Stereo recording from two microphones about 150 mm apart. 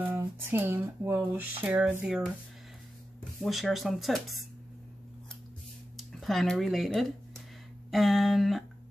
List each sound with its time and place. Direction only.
0.0 s speech: 15° right (ahead or behind)
3.4 s speech: centre (ahead or behind)
5.9 s speech: centre (ahead or behind)